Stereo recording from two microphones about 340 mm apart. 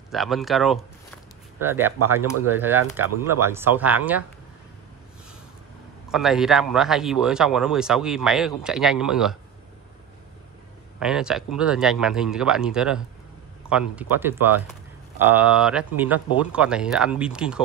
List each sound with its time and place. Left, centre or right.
0.1 s speech: centre
6.0 s speech: centre
11.0 s speech: centre